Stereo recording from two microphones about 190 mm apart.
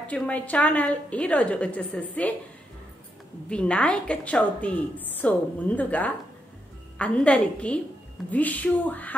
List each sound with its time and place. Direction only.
0.1 s a woman's voice: 10° left (ahead or behind)
3.4 s a woman's voice: 5° left (ahead or behind)